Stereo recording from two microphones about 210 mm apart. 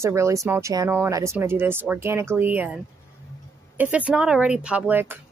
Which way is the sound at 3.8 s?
5° right (ahead or behind).